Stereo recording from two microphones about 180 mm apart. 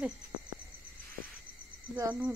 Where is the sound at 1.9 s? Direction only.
20° right (ahead or behind).